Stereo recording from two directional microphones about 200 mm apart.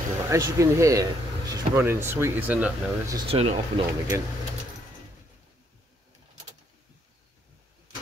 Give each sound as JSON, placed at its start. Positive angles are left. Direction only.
{"t": 0.3, "sound": "speech", "side_deg": -15}
{"t": 3.2, "sound": "speech", "side_deg": -30}